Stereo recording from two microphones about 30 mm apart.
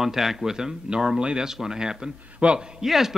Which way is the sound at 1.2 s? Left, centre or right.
Right.